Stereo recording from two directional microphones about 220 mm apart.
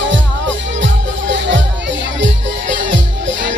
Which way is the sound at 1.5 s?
55° right (ahead or behind).